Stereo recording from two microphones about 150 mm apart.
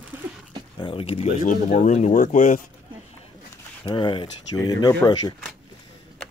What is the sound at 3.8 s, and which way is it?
Speech, 35° left (ahead or behind).